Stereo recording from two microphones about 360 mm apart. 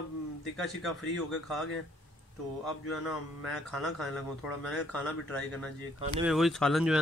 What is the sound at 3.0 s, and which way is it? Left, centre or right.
Speech, centre.